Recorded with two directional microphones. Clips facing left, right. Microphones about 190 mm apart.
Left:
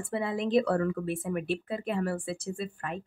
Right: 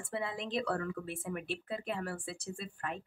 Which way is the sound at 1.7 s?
60° left (ahead or behind).